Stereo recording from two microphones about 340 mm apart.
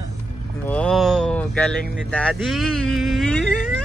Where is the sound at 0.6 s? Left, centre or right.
Centre.